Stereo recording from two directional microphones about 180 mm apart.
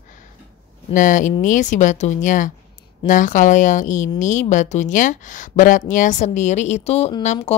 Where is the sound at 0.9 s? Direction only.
45° left (ahead or behind).